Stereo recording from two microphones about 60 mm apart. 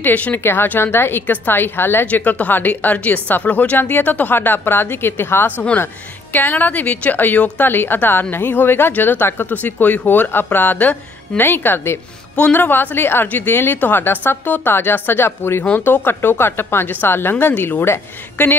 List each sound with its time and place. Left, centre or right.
0.0 s a woman's voice: left
0.4 s a woman's voice: left
2.0 s a woman's voice: left
12.4 s a woman's voice: left